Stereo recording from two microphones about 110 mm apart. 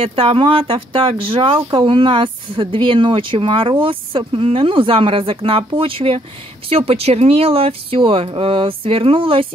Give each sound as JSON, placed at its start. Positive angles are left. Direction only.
{"t": 0.0, "sound": "speech", "side_deg": -55}